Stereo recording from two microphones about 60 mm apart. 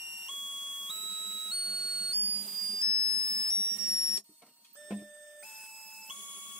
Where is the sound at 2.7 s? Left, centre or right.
Centre.